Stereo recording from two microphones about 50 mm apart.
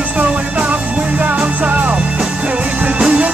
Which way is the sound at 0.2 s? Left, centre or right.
Right.